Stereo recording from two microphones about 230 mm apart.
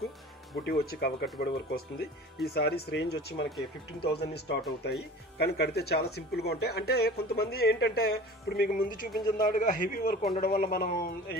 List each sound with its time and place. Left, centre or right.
0.7 s speech: left